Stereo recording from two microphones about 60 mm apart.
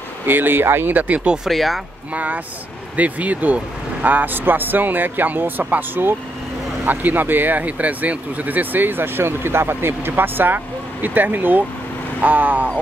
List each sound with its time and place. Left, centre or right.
0.3 s speech: right
1.5 s speech: centre
2.1 s speech: right